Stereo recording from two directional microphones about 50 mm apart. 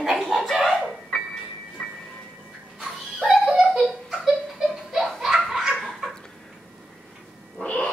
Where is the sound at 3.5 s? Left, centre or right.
Centre.